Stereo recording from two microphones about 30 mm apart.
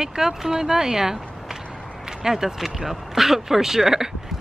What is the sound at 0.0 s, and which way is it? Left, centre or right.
Speech, centre.